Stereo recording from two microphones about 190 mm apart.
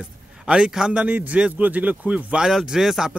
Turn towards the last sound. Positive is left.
turn(degrees=0)  # may be behind; listen again after turning